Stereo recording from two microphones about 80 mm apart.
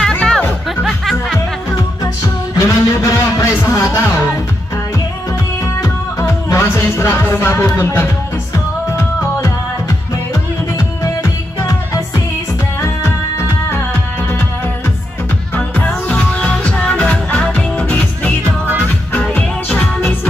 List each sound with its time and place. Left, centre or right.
0.0 s music: centre
2.5 s music: left
5.8 s music: left
15.5 s music: centre
19.3 s music: centre